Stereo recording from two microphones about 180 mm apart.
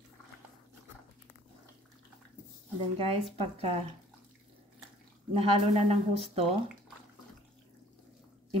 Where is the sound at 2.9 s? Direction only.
30° right (ahead or behind).